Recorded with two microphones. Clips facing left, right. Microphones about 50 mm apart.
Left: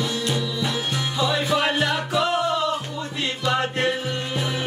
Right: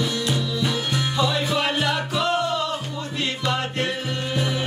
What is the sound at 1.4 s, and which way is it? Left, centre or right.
Music, left.